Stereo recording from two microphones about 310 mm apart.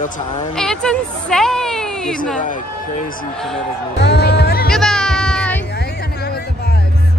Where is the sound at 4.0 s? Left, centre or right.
Left.